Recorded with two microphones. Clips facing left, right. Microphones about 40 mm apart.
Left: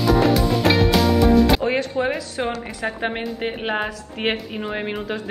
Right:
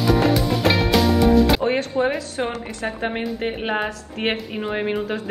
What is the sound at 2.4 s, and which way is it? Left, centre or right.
Speech, centre.